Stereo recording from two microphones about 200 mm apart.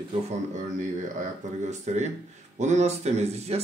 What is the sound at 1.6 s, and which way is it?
Speech, 35° right (ahead or behind).